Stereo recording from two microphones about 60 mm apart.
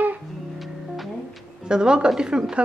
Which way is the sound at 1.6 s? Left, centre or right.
Centre.